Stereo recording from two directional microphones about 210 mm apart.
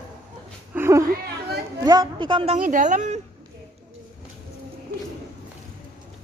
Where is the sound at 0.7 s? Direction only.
10° right (ahead or behind).